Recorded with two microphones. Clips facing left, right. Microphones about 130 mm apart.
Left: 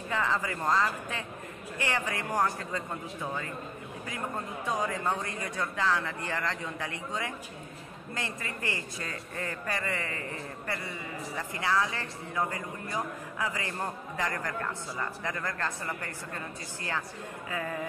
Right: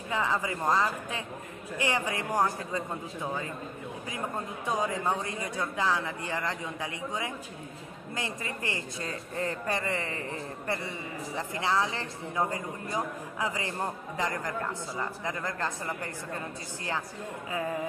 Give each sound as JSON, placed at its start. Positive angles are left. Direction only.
{"t": 0.1, "sound": "speech", "side_deg": -15}
{"t": 4.6, "sound": "a man's voice", "side_deg": -20}